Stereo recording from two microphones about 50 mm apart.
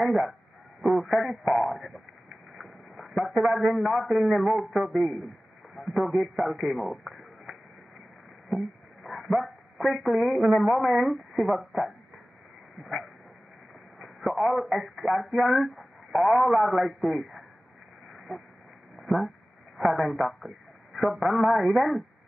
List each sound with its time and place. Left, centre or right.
0.0 s speech: centre
2.5 s a sound: centre
4.0 s speech: centre
4.5 s speech: centre
4.8 s a man's voice: centre
8.5 s a sound: centre
9.9 s speech: centre
12.8 s dog: centre
13.9 s speech: centre
16.1 s speech: centre
18.1 s a sound: centre
18.9 s speech: centre